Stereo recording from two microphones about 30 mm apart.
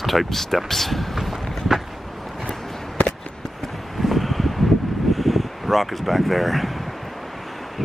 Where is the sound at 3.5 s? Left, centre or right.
Centre.